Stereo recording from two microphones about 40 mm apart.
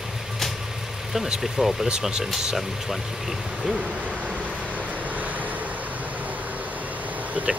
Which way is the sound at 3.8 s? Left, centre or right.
Right.